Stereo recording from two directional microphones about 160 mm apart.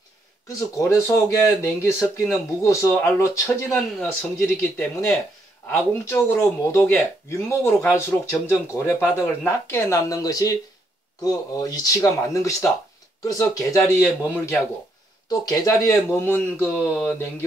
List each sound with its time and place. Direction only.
0.5 s speech: 20° left (ahead or behind)